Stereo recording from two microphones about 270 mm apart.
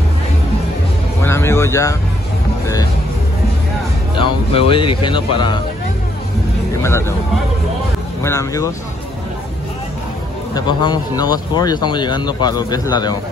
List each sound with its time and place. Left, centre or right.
1.2 s music: centre
4.1 s speech: centre
6.8 s speech: centre
8.2 s speech: centre
10.5 s speech: centre